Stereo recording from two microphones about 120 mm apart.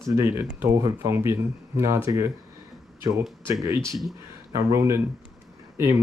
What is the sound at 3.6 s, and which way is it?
Speech, 25° right (ahead or behind).